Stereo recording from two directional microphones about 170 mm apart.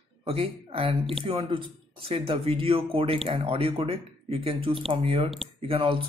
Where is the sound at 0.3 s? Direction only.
35° right (ahead or behind).